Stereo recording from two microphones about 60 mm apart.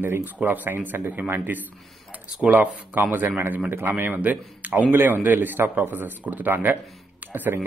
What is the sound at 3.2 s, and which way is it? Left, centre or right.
Speech, right.